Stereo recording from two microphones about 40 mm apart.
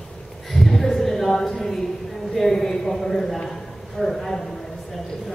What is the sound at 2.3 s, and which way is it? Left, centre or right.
A man's voice, centre.